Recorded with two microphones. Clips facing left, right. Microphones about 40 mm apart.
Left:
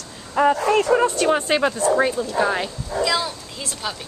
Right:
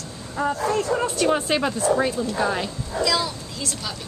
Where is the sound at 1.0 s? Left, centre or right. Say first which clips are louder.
Left 3 dB; centre.